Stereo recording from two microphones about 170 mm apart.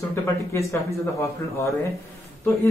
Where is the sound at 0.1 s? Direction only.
15° left (ahead or behind).